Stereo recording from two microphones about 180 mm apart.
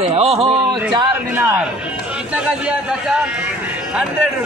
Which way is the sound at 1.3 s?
10° right (ahead or behind).